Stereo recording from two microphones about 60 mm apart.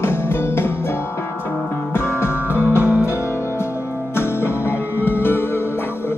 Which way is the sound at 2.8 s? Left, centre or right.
Right.